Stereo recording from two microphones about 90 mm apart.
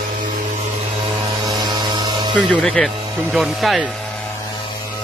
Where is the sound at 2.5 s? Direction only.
10° left (ahead or behind).